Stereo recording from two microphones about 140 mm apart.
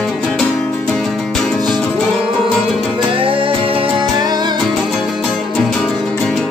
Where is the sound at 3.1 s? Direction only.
40° right (ahead or behind).